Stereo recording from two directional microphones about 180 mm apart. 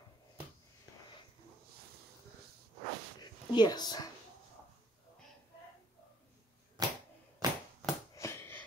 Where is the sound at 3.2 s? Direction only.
25° left (ahead or behind).